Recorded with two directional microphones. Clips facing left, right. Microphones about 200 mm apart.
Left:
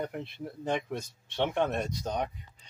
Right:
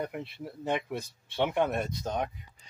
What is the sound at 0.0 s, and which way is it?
Speech, 5° right (ahead or behind).